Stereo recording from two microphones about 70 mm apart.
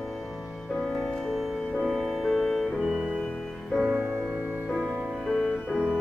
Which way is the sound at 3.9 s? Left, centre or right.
Centre.